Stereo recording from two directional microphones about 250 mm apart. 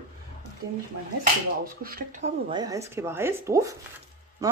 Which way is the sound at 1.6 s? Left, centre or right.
Right.